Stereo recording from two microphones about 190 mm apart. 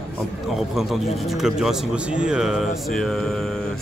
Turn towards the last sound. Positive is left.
turn(degrees=0)  # may be behind; listen again after turning